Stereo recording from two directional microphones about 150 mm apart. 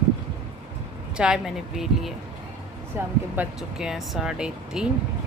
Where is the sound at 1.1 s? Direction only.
5° right (ahead or behind).